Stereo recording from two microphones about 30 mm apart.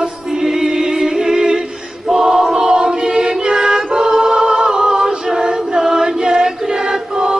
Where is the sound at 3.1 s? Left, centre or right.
Right.